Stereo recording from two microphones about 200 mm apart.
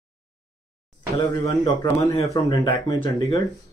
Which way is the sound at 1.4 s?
15° left (ahead or behind).